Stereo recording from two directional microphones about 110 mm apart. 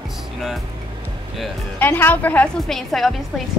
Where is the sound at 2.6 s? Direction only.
Centre (ahead or behind).